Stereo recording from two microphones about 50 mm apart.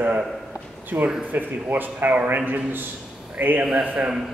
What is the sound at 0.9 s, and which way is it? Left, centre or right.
A man's voice, right.